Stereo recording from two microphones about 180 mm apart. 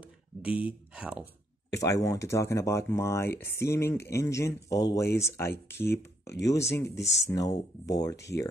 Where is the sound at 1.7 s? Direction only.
20° left (ahead or behind).